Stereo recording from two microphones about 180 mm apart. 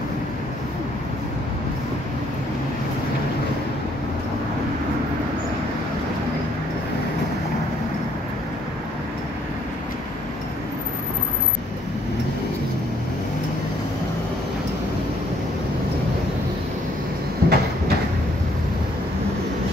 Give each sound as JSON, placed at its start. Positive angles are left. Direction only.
{"t": 17.4, "sound": "train", "side_deg": -60}